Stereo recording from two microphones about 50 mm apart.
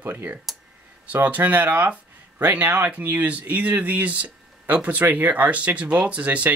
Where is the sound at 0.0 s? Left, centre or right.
Right.